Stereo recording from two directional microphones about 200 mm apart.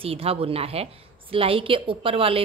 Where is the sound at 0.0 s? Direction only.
30° right (ahead or behind).